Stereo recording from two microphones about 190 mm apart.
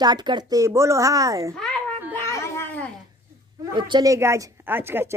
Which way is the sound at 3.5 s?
25° right (ahead or behind).